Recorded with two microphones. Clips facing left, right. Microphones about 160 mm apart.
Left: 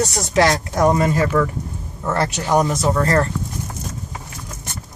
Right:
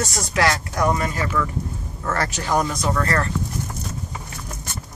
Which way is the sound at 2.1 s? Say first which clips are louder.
Left 4 dB; 20° left (ahead or behind).